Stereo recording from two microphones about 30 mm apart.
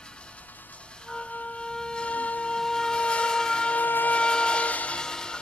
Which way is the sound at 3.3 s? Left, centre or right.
Left.